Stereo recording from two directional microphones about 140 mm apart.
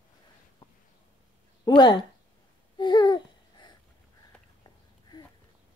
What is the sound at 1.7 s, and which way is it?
Speech, 30° left (ahead or behind).